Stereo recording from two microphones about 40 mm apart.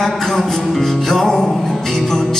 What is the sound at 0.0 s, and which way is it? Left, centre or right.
Music, centre.